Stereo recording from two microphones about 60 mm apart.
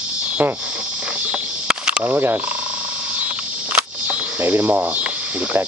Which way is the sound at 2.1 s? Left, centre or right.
Right.